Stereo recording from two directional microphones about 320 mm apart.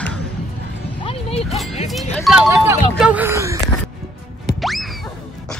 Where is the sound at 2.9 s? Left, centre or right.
Centre.